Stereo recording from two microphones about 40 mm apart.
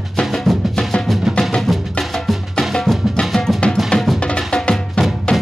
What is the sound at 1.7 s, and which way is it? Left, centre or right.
Music, centre.